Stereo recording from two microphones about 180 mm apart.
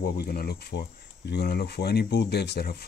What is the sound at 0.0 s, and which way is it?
Speech, 55° left (ahead or behind).